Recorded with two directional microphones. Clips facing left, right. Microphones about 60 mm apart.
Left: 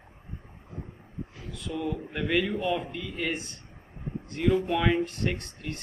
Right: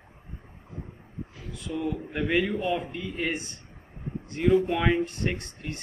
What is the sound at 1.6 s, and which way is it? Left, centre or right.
A man's voice, centre.